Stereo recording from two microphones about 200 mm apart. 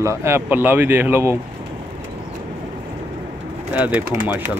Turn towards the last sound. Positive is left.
turn(degrees=-10)  # may be behind; listen again after turning